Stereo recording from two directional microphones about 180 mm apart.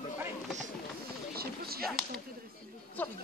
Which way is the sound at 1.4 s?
60° right (ahead or behind).